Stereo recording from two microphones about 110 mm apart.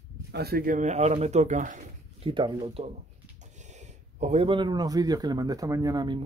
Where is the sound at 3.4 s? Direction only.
90° right.